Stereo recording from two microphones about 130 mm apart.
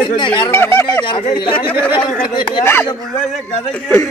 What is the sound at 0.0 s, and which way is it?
Speech, 40° left (ahead or behind).